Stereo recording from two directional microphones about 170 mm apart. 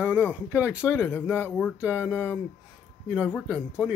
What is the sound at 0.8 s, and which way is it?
Speech, 15° left (ahead or behind).